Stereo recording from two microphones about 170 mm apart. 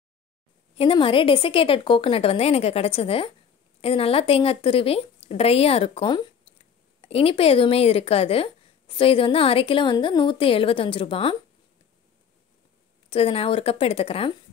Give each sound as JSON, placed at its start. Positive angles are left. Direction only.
{"t": 0.7, "sound": "a woman's voice", "side_deg": 30}
{"t": 13.1, "sound": "a woman's voice", "side_deg": 35}